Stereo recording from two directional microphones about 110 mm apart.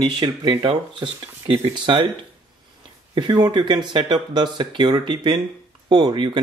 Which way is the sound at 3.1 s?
40° right (ahead or behind).